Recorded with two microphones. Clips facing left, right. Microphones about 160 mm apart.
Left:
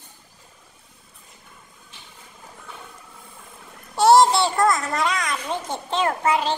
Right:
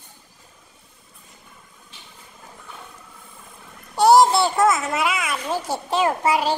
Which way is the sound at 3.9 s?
Centre (ahead or behind).